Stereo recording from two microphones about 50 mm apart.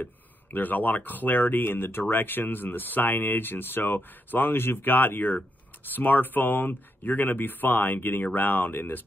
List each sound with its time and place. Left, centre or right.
0.0 s speech: left